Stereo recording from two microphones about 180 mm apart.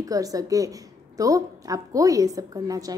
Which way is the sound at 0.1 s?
20° right (ahead or behind).